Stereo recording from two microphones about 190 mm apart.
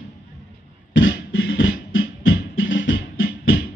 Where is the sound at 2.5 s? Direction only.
85° left.